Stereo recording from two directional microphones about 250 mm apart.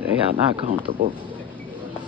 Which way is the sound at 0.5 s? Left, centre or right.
Right.